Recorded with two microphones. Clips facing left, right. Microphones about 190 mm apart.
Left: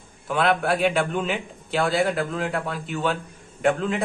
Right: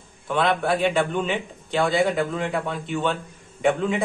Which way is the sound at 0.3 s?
5° left (ahead or behind).